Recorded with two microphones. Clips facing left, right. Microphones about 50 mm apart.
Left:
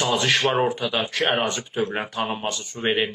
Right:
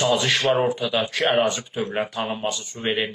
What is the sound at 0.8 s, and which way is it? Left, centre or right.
Speech, centre.